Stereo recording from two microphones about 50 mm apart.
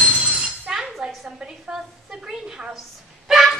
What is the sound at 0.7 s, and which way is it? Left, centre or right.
Chink, centre.